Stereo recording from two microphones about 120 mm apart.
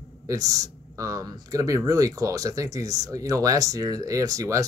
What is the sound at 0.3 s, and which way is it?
Speech, 30° right (ahead or behind).